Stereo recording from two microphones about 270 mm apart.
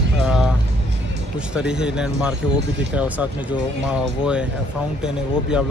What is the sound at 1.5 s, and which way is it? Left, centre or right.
Speech, centre.